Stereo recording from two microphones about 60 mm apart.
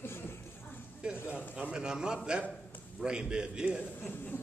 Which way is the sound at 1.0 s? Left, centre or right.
Centre.